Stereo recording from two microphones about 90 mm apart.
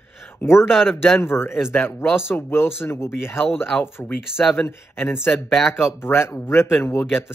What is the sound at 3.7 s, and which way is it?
Speech, 5° right (ahead or behind).